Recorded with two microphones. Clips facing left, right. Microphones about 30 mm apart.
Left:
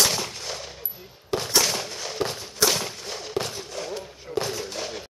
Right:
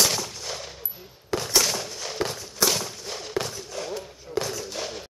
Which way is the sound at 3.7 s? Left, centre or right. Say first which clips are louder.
Right 2 dB; centre.